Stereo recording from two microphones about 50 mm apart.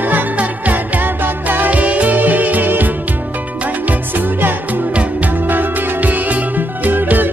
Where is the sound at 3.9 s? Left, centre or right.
Right.